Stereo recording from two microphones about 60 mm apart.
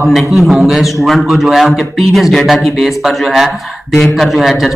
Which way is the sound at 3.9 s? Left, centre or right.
Centre.